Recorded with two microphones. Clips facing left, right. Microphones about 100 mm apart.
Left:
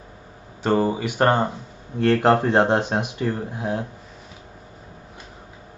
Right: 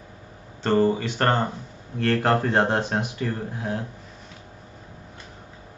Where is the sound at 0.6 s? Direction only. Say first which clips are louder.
Even; 10° left (ahead or behind).